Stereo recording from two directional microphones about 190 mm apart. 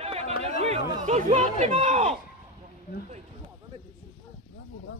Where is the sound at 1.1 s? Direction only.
40° right (ahead or behind).